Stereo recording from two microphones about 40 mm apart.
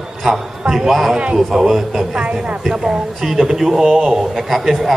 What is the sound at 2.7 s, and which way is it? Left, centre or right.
A man's voice, centre.